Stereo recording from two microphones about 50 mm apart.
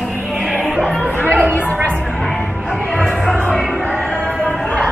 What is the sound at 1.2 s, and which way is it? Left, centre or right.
Chatter, right.